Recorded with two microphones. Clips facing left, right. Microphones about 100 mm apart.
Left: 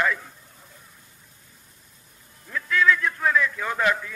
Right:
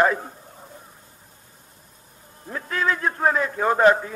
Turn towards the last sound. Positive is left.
turn(degrees=-35)  # may be behind; listen again after turning